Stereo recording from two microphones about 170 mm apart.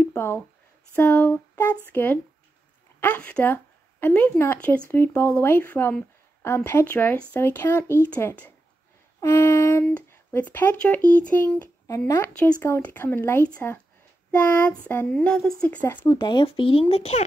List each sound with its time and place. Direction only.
0.0 s a sound: 15° left (ahead or behind)
0.9 s speech: 10° left (ahead or behind)
16.2 s speech: 25° left (ahead or behind)